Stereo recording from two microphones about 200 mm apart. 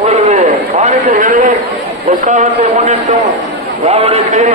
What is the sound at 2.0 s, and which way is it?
A man's voice, 40° right (ahead or behind).